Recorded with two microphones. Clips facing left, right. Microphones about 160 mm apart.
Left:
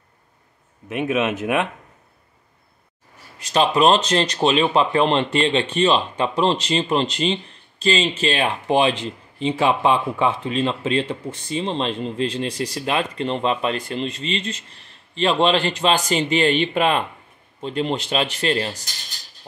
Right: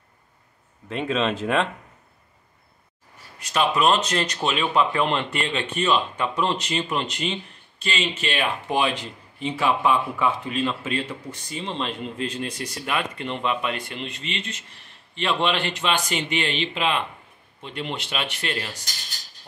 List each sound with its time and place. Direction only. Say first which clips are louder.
0.8 s speech: left 3 dB; 15° left (ahead or behind)
3.5 s speech: left 4 dB; 30° left (ahead or behind); by 17.0 s 50° left (ahead or behind)
17.6 s speech: left 8 dB; 35° left (ahead or behind)